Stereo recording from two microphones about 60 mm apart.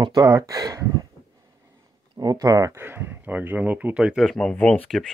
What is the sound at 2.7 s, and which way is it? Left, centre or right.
Speech, right.